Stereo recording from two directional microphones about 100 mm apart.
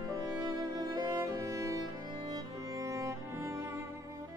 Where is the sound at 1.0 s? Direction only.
30° right (ahead or behind).